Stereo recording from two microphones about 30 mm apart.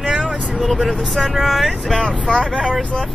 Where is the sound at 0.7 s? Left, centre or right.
Centre.